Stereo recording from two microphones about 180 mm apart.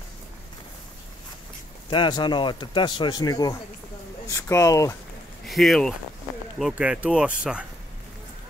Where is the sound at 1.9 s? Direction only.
25° left (ahead or behind).